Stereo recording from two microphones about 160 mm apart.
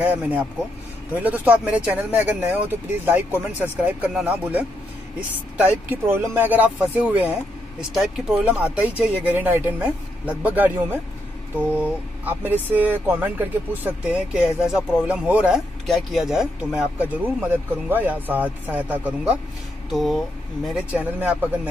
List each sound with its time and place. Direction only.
0.0 s speech: 10° right (ahead or behind)